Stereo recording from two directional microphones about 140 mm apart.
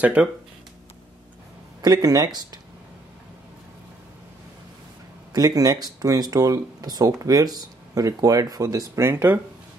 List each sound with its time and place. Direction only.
0.0 s speech: 10° right (ahead or behind)
1.8 s speech: 25° right (ahead or behind)
5.3 s speech: 25° right (ahead or behind)